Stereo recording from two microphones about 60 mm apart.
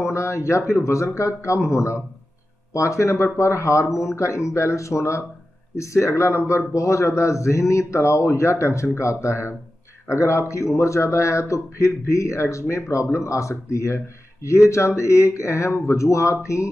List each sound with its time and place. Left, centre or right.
0.0 s a man's voice: left